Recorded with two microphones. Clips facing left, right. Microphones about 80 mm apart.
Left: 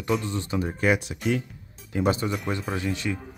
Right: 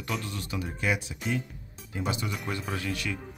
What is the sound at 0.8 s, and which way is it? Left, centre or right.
Speech, left.